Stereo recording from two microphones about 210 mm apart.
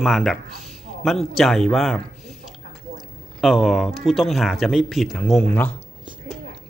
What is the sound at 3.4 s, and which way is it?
Speech, centre (ahead or behind).